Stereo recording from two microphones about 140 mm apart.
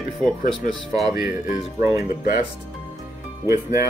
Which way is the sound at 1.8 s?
20° right (ahead or behind).